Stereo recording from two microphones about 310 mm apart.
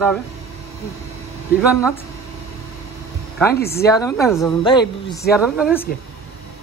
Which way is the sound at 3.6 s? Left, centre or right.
Left.